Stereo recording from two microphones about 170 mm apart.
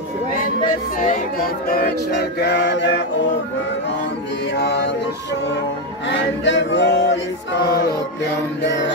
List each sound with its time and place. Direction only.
0.4 s music: 55° left (ahead or behind)
2.4 s mantra: 85° left
4.6 s mantra: 85° left
6.0 s male singing: 90° left
8.6 s a sound: 90° left